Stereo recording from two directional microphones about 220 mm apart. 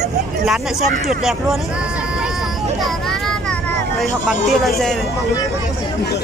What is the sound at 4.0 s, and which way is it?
Speech, centre (ahead or behind).